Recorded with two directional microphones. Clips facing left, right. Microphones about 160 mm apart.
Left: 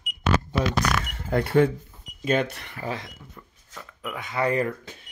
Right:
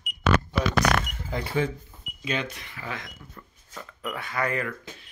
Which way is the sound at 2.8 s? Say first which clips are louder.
Left 5 dB; 35° left (ahead or behind).